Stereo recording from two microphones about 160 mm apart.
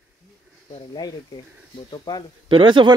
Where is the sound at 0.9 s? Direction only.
25° left (ahead or behind).